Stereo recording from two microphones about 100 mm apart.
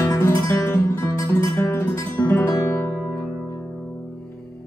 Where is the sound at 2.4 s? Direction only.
30° left (ahead or behind).